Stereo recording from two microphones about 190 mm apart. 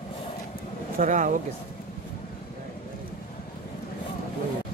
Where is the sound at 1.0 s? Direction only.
40° right (ahead or behind).